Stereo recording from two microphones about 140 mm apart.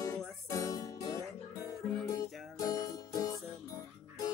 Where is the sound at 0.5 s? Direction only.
25° left (ahead or behind).